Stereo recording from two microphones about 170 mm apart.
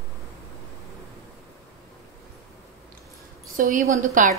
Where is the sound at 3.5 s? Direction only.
55° right (ahead or behind).